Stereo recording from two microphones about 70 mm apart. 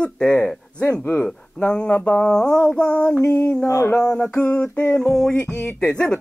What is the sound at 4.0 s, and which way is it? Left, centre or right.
Speech, centre.